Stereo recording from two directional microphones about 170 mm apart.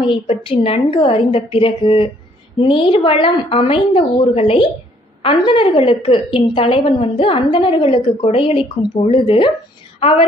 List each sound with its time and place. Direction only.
0.0 s a woman's voice: 30° left (ahead or behind)